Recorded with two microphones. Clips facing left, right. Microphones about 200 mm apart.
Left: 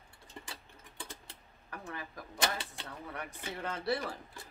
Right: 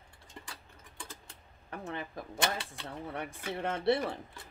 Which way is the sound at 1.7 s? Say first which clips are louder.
Right 4 dB; 25° right (ahead or behind).